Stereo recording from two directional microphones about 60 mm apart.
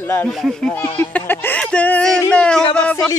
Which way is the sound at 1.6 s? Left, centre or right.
Left.